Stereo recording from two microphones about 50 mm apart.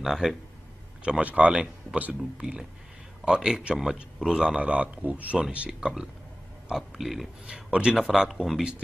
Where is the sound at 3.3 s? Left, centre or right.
Centre.